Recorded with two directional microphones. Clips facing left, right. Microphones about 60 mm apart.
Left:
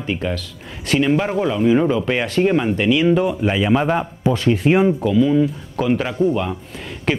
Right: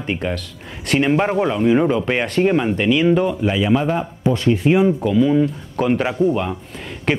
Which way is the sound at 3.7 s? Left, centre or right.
Left.